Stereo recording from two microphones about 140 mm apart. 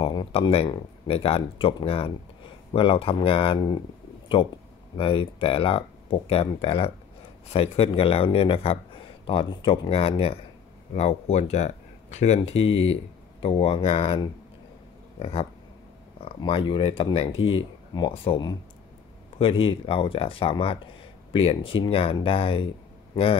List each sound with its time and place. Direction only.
0.0 s speech: 35° left (ahead or behind)
4.9 s speech: 40° left (ahead or behind)